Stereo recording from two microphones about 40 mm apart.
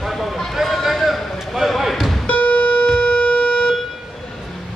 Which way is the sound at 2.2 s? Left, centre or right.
Left.